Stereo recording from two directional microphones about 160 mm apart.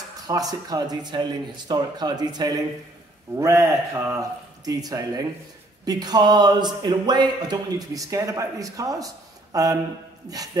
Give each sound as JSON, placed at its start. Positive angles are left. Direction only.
{"t": 0.3, "sound": "speech", "side_deg": -25}